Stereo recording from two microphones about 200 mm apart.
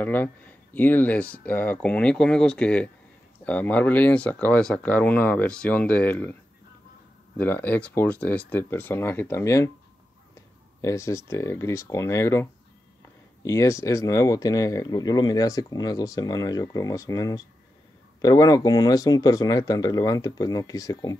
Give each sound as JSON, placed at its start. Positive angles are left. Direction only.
{"t": 0.0, "sound": "speech", "side_deg": 10}
{"t": 7.3, "sound": "speech", "side_deg": 10}
{"t": 10.8, "sound": "speech", "side_deg": 15}